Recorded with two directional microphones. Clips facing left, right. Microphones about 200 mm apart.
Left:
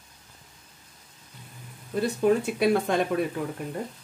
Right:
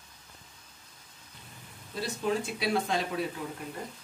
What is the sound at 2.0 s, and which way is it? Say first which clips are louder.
Speech: left 8 dB; 55° left (ahead or behind).